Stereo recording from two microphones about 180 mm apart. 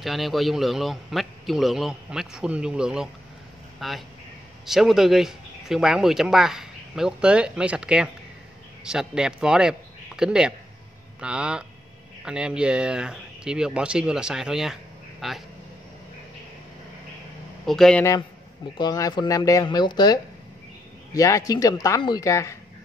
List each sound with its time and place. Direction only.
0.0 s a man's voice: centre (ahead or behind)
17.6 s speech: 5° left (ahead or behind)
18.8 s speech: 20° left (ahead or behind)